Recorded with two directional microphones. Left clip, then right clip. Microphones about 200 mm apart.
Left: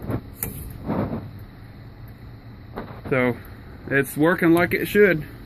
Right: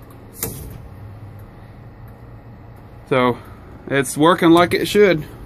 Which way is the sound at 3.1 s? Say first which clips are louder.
Right 5 dB; 10° right (ahead or behind).